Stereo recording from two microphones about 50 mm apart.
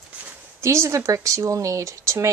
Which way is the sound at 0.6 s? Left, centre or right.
Right.